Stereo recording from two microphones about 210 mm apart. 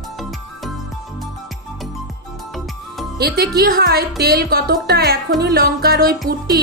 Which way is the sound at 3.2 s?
50° right (ahead or behind).